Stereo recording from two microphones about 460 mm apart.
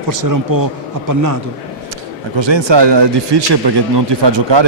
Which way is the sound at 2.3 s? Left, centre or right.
Right.